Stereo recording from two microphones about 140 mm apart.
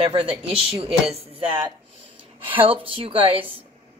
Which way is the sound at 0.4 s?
45° right (ahead or behind).